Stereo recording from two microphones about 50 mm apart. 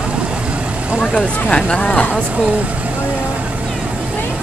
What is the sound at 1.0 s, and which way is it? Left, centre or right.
Speech, centre.